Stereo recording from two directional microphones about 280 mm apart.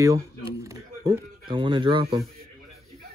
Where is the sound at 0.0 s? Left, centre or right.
Centre.